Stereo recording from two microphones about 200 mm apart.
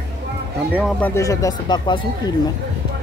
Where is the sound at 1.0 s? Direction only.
15° left (ahead or behind).